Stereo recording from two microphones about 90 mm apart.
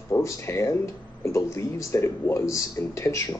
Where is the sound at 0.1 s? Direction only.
30° left (ahead or behind).